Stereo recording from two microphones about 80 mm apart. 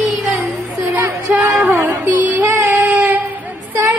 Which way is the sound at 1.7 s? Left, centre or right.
Right.